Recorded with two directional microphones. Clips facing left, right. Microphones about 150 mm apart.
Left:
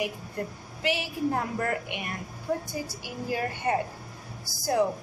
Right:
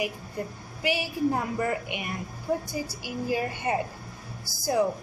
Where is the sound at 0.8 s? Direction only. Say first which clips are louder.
Right 2 dB; 5° right (ahead or behind).